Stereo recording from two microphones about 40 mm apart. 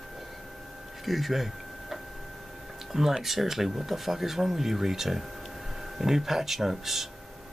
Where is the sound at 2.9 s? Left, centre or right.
Centre.